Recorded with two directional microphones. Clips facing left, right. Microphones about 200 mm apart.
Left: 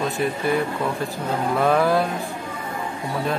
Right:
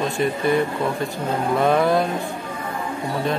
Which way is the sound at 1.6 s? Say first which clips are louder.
Right 1 dB; centre (ahead or behind).